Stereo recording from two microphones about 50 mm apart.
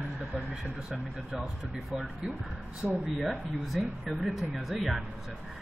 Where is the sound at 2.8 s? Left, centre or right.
Right.